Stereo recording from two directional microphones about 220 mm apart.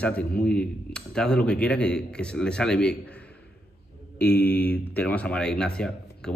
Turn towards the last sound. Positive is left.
turn(degrees=5)  # may be behind; listen again after turning